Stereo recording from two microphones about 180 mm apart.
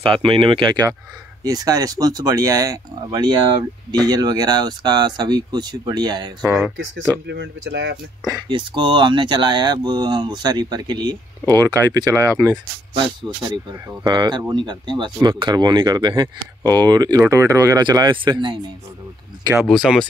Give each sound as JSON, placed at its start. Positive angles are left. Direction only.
{"t": 0.0, "sound": "speech", "side_deg": -30}
{"t": 7.2, "sound": "speech", "side_deg": -75}
{"t": 8.3, "sound": "speech", "side_deg": -25}
{"t": 19.6, "sound": "speech", "side_deg": 0}